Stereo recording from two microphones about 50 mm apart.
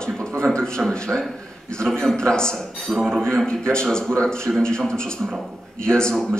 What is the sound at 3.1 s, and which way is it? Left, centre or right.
Speech, centre.